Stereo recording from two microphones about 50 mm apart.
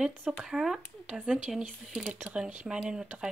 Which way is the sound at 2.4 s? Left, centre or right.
Centre.